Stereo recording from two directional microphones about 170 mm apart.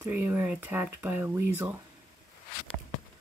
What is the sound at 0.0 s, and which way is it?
Speech, 15° right (ahead or behind).